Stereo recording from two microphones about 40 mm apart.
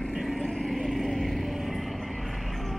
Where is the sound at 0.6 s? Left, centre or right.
Centre.